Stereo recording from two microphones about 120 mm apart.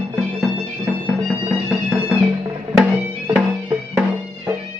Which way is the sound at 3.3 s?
10° right (ahead or behind).